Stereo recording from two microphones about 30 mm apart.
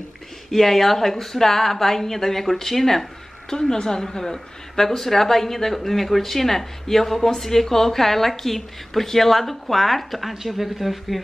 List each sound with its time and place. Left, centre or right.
0.5 s a woman's voice: centre
3.4 s a woman's voice: centre
10.3 s speech: centre